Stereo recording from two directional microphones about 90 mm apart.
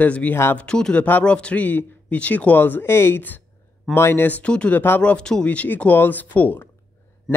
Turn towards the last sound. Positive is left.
turn(degrees=20)  # may be behind; listen again after turning